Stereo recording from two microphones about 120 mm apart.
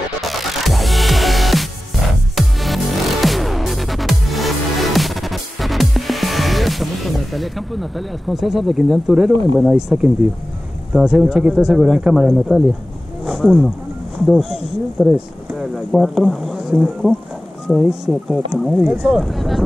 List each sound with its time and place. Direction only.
0.2 s music: centre (ahead or behind)
9.1 s speech: 5° right (ahead or behind)
13.2 s wild animals: centre (ahead or behind)
14.2 s speech: 5° right (ahead or behind)